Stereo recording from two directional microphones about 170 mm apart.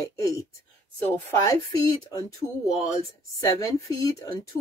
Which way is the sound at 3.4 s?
20° left (ahead or behind).